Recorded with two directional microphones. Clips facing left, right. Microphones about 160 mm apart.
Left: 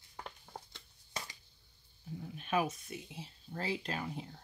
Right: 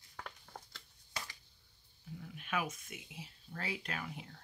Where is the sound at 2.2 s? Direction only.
30° left (ahead or behind).